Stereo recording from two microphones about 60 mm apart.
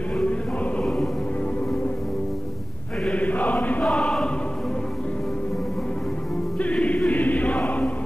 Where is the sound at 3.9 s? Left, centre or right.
Centre.